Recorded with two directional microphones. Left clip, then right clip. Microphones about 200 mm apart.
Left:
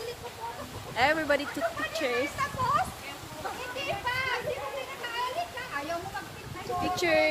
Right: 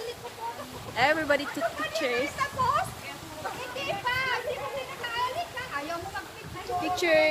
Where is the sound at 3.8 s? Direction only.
10° right (ahead or behind).